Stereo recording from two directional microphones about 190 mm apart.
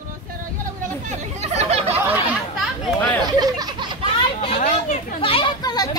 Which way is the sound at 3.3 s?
20° right (ahead or behind).